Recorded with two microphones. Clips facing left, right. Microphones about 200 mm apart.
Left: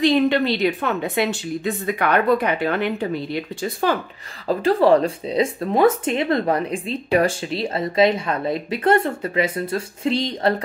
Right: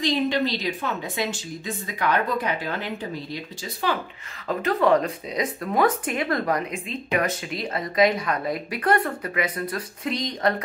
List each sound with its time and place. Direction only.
0.0 s a woman's voice: 60° left (ahead or behind)
4.5 s speech: 30° left (ahead or behind)